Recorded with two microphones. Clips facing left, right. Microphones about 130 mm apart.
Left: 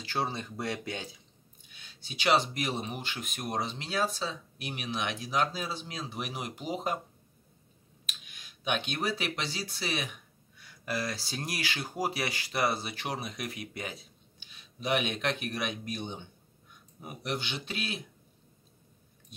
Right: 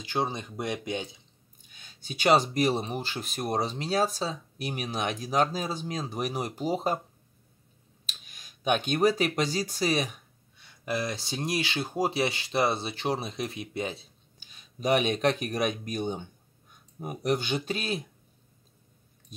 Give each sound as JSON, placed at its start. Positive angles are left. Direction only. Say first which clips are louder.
{"t": 0.0, "sound": "speech", "louder": "right 3 dB", "side_deg": -20}
{"t": 1.7, "sound": "speech", "louder": "right 5 dB", "side_deg": -45}
{"t": 8.1, "sound": "speech", "louder": "even", "side_deg": -40}
{"t": 10.6, "sound": "speech", "louder": "right 3 dB", "side_deg": -20}
{"t": 14.4, "sound": "speech", "louder": "right 6 dB", "side_deg": -40}